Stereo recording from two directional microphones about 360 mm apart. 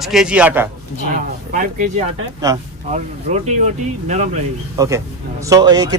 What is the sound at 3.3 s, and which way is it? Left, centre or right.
A man's voice, centre.